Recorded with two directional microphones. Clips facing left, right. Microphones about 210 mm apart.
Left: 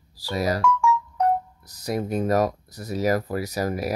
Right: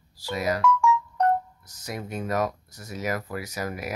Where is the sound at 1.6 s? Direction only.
35° left (ahead or behind).